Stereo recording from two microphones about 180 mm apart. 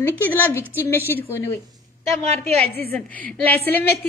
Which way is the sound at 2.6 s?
60° left (ahead or behind).